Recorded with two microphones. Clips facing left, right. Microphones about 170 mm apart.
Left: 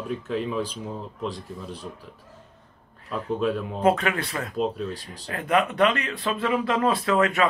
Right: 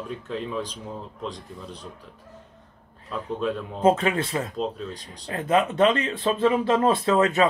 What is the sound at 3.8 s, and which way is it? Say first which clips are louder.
Speech: right 3 dB; 25° right (ahead or behind).